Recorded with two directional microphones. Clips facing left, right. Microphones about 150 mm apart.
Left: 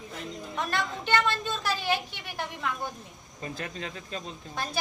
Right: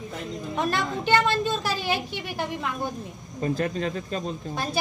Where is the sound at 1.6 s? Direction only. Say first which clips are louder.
Right 2 dB; 5° right (ahead or behind).